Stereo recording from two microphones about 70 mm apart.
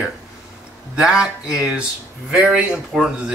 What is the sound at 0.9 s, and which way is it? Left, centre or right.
Speech, centre.